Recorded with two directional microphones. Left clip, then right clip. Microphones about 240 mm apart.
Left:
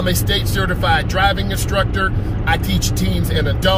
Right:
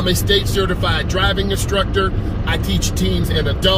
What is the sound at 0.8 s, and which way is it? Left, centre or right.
Speech, centre.